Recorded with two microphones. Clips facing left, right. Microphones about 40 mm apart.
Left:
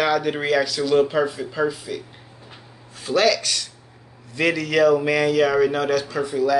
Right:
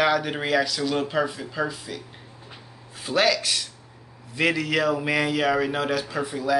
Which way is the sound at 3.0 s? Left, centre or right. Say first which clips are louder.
Left 3 dB; centre.